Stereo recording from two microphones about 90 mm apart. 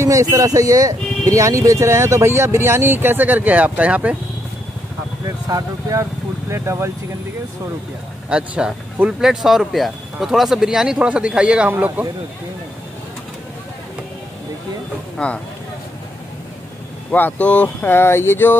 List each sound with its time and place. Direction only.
0.0 s speech: 35° right (ahead or behind); by 4.2 s 15° right (ahead or behind)
5.5 s speech: 40° right (ahead or behind)
8.3 s speech: 10° right (ahead or behind)
11.7 s speech: 25° right (ahead or behind)
15.1 s speech: 10° left (ahead or behind)
17.1 s speech: 15° left (ahead or behind)